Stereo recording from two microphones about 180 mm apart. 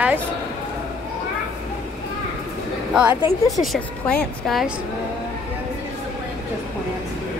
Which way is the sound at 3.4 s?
Centre (ahead or behind).